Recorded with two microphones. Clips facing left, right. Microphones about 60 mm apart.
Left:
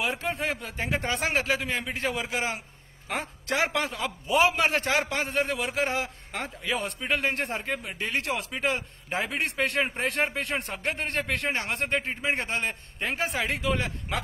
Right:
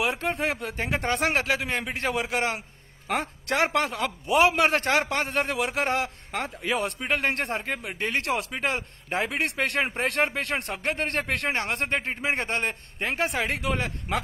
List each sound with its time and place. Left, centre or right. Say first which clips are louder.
0.0 s a man's voice: right 3 dB; right